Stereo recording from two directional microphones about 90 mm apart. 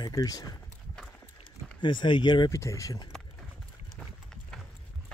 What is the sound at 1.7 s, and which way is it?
Speech, 60° left (ahead or behind).